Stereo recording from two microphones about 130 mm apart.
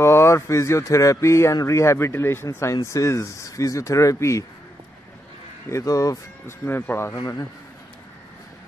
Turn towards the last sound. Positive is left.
turn(degrees=30)  # may be behind; listen again after turning